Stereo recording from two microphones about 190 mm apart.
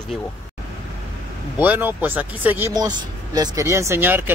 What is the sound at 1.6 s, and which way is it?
Speech, 10° right (ahead or behind).